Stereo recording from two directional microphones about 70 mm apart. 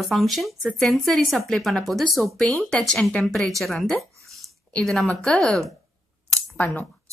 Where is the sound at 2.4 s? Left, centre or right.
Centre.